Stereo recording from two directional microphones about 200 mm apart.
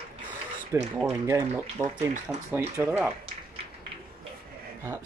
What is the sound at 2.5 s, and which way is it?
Speech, 10° right (ahead or behind).